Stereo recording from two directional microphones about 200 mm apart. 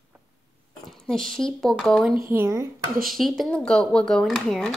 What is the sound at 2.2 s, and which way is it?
Speech, 15° right (ahead or behind).